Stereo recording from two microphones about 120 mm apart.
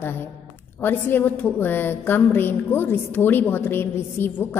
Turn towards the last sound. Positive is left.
turn(degrees=20)  # may be behind; listen again after turning